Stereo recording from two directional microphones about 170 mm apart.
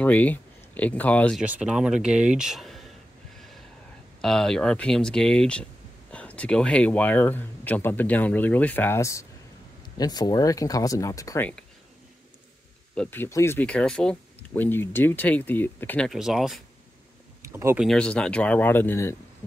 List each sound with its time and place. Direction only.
0.0 s speech: 10° left (ahead or behind)
1.4 s speech: 5° right (ahead or behind)
4.2 s speech: centre (ahead or behind); by 11.4 s 20° left (ahead or behind)
12.9 s speech: 10° left (ahead or behind)
16.1 s speech: centre (ahead or behind)
17.5 s speech: 15° right (ahead or behind)
17.7 s speech: 5° left (ahead or behind)